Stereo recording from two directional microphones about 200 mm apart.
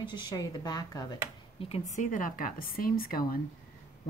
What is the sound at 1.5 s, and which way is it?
A woman's voice, 30° left (ahead or behind).